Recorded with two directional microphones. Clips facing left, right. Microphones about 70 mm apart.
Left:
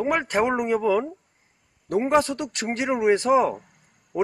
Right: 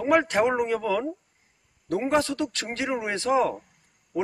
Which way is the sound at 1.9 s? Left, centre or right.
Centre.